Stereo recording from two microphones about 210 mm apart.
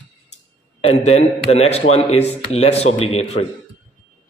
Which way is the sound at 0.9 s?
30° left (ahead or behind).